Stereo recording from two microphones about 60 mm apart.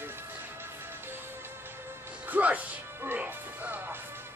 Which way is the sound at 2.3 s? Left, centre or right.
Right.